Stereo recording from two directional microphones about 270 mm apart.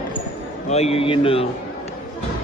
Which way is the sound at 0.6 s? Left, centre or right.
Left.